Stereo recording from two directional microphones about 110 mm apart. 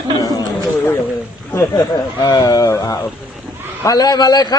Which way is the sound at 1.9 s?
40° left (ahead or behind).